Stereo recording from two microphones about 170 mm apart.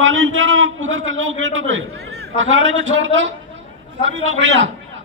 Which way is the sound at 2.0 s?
70° right (ahead or behind).